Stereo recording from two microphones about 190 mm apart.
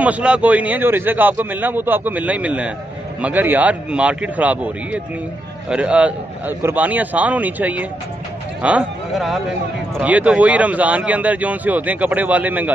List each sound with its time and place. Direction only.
0.0 s speech: 5° right (ahead or behind)